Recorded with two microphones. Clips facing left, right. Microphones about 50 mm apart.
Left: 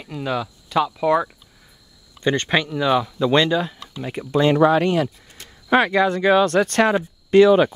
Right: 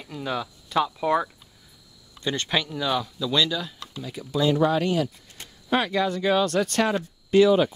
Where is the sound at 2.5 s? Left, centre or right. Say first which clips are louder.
Left 5 dB; left.